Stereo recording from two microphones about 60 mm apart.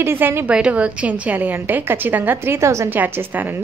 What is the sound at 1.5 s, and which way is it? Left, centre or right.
A woman's voice, right.